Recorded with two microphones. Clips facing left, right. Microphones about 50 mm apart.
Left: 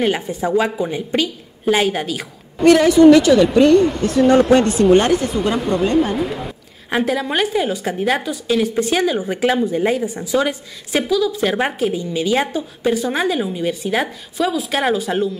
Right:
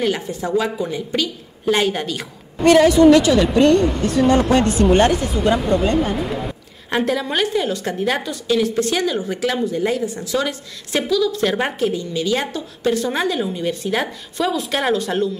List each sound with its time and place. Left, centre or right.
0.0 s a woman's voice: centre
1.7 s a woman's voice: centre